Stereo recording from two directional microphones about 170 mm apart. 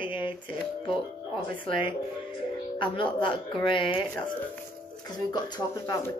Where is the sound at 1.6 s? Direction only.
30° left (ahead or behind).